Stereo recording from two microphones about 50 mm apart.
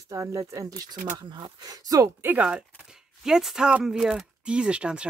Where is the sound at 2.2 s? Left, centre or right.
Right.